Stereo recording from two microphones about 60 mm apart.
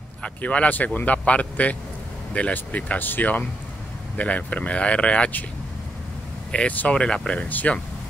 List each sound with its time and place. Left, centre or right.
0.2 s speech: left
6.5 s speech: centre